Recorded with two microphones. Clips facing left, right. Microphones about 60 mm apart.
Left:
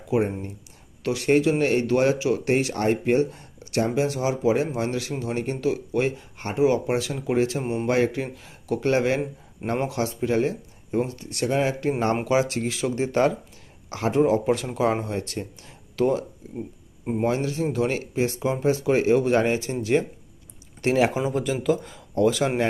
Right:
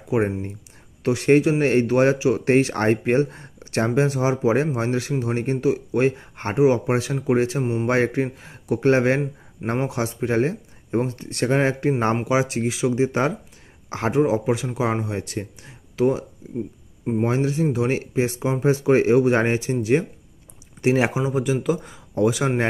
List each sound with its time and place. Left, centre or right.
0.1 s speech: right
12.3 s speech: right
13.8 s speech: right
14.1 s speech: centre
17.3 s speech: right
21.1 s speech: centre